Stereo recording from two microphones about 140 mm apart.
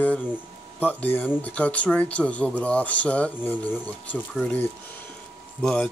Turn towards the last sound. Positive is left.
turn(degrees=5)  # may be behind; listen again after turning